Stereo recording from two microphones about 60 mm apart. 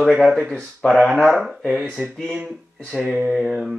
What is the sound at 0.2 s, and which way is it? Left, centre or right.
Speech, centre.